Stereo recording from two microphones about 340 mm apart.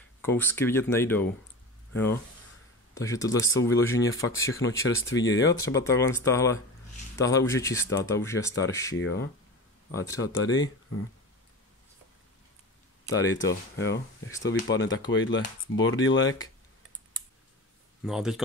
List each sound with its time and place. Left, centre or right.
0.2 s speech: centre
2.9 s speech: centre
5.0 s speech: left
5.5 s speech: centre
8.9 s speech: left
9.8 s speech: centre
13.0 s speech: centre
13.7 s speech: left
14.3 s speech: centre
14.6 s speech: left
18.0 s speech: centre